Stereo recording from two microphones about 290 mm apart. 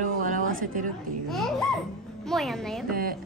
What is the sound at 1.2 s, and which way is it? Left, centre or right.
A woman's voice, centre.